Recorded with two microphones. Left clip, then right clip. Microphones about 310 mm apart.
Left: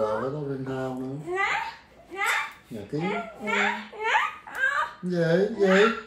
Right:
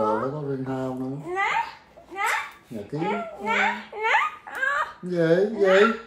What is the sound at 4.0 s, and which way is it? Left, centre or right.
Laughter, right.